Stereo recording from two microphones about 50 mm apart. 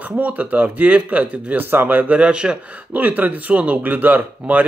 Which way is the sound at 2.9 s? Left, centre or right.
Right.